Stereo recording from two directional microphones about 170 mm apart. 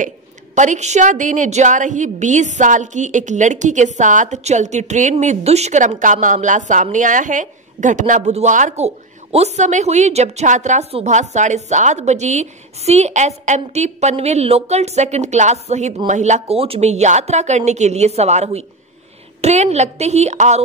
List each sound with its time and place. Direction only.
0.6 s a woman's voice: 45° right (ahead or behind)